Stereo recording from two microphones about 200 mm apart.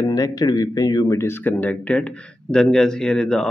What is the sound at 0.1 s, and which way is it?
Speech, 20° left (ahead or behind).